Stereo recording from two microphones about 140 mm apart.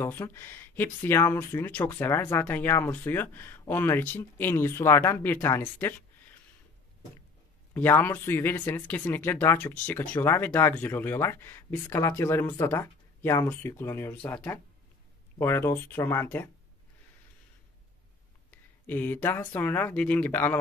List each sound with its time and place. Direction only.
0.0 s speech: 15° left (ahead or behind)
7.7 s speech: 15° left (ahead or behind)
18.9 s speech: 15° left (ahead or behind)